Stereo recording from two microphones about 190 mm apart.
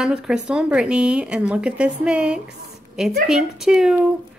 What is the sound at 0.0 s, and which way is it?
A woman's voice, 5° right (ahead or behind).